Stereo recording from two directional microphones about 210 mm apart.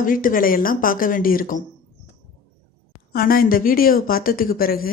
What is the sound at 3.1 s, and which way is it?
A woman's voice, 45° left (ahead or behind).